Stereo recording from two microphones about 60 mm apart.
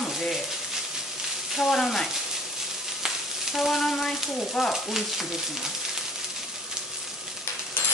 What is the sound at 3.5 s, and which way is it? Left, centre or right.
Speech, centre.